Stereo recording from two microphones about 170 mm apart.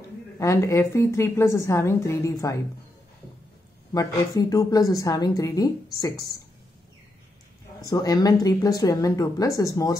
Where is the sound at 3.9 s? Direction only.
20° left (ahead or behind).